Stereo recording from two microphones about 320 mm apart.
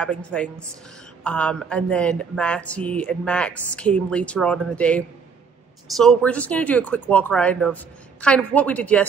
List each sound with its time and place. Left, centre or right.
0.0 s speech: centre